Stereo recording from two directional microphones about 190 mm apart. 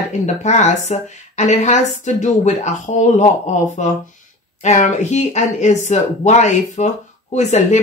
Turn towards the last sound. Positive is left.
turn(degrees=35)  # may be behind; listen again after turning